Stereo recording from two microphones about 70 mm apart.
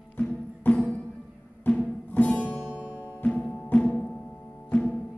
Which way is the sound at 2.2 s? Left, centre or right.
Left.